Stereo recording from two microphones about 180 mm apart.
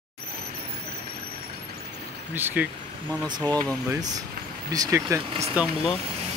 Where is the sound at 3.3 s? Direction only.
25° right (ahead or behind).